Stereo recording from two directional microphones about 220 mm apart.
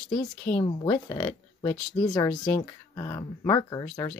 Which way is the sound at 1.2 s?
10° left (ahead or behind).